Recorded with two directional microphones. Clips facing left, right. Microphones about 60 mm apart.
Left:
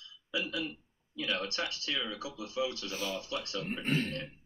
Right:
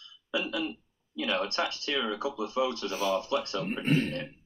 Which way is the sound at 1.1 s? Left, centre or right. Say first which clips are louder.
Right 5 dB; right.